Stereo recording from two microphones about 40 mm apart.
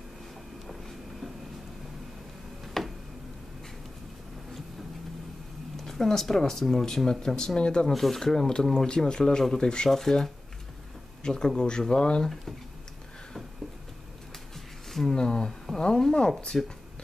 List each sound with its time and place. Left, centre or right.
2.6 s a sound: centre
5.8 s speech: centre
7.9 s speech: centre
11.2 s speech: centre
14.9 s a sound: centre
15.1 s speech: centre